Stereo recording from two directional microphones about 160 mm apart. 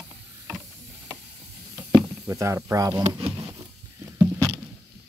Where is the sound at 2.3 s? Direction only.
20° right (ahead or behind).